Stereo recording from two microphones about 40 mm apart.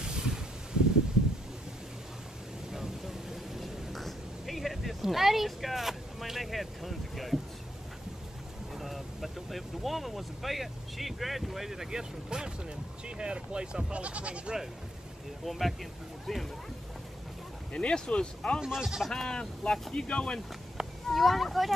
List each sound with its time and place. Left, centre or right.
0.0 s a sound: centre
2.7 s a sound: centre
8.7 s speech: centre; by 14.5 s right
15.4 s speech: centre
17.7 s speech: left
18.6 s speech: centre
19.2 s speech: left
21.1 s speech: centre